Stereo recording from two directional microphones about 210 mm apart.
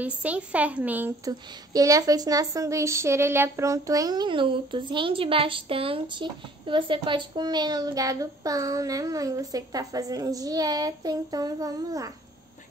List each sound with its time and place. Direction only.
0.0 s speech: 5° right (ahead or behind)